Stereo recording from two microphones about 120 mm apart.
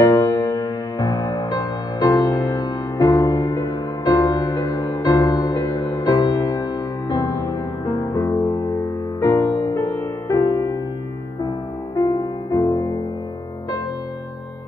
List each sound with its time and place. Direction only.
0.0 s music: 30° left (ahead or behind)
11.9 s music: 30° left (ahead or behind)